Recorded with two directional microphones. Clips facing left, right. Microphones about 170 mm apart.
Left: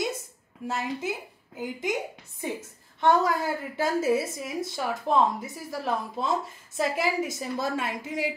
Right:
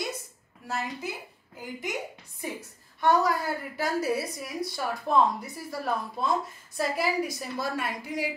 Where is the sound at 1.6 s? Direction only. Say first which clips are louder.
Left 6 dB; 20° left (ahead or behind).